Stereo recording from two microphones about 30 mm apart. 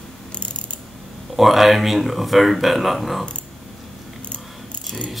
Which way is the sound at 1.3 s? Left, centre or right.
Centre.